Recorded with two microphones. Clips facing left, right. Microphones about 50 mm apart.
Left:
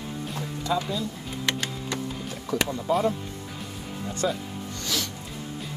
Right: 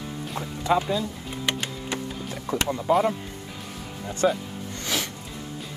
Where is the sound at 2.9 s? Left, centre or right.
Right.